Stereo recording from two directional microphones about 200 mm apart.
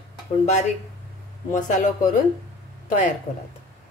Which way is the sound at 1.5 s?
40° left (ahead or behind).